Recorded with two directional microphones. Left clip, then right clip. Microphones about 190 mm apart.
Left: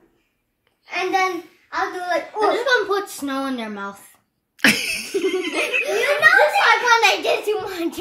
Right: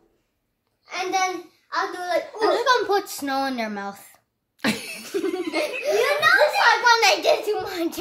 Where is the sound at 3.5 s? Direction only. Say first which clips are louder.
Even; 70° right (ahead or behind).